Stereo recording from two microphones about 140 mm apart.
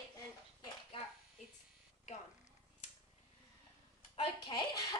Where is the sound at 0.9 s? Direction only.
40° left (ahead or behind).